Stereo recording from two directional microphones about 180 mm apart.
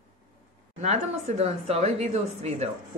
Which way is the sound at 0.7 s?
40° right (ahead or behind).